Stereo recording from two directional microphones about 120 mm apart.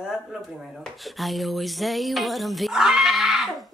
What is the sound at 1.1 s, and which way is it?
Speech, centre (ahead or behind).